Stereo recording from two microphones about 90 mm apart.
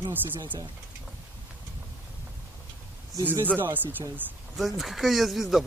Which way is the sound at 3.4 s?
20° right (ahead or behind).